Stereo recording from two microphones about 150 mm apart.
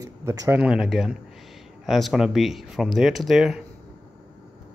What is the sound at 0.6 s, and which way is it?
Speech, 5° right (ahead or behind).